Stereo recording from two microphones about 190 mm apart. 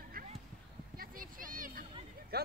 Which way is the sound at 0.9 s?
50° right (ahead or behind).